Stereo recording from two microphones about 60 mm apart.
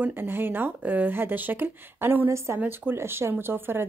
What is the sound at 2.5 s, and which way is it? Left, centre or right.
A woman's voice, right.